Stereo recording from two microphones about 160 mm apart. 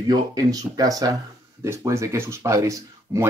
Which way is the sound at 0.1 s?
25° right (ahead or behind).